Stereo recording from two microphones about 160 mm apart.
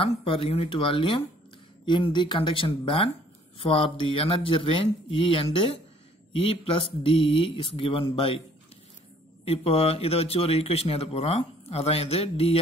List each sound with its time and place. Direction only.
0.0 s speech: 35° left (ahead or behind)